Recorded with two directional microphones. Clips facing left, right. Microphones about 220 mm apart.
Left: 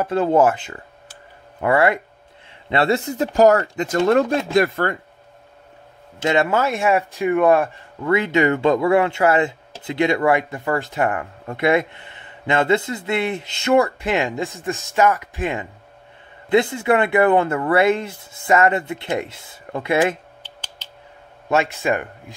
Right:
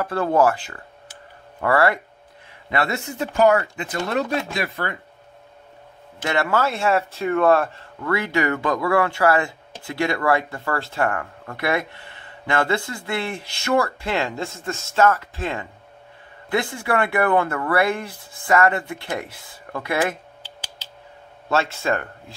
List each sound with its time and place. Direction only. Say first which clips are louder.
0.0 s speech: left 3 dB; 20° left (ahead or behind)
2.7 s speech: left 5 dB; 30° left (ahead or behind); by 4.9 s 45° left (ahead or behind)
6.1 s speech: left 4 dB; 20° left (ahead or behind)
21.5 s speech: left 2 dB; 15° left (ahead or behind)